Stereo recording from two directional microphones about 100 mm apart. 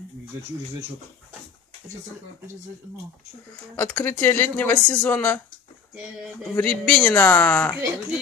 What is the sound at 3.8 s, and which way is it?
Speech, 20° left (ahead or behind).